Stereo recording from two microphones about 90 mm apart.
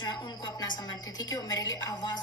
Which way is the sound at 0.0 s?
50° left (ahead or behind).